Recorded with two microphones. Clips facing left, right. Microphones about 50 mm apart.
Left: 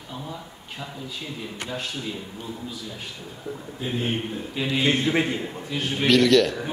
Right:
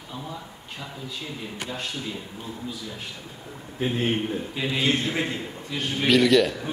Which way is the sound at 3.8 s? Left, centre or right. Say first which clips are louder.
Right 4 dB; right.